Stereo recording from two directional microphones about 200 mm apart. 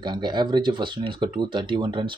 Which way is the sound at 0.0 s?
20° right (ahead or behind).